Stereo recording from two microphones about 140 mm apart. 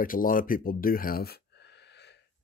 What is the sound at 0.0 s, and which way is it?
Speech, 85° left.